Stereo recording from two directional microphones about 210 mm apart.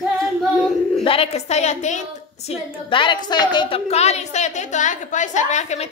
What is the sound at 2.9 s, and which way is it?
A woman's voice, 20° left (ahead or behind).